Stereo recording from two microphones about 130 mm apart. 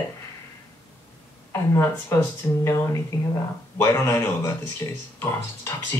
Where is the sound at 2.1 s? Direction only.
25° left (ahead or behind).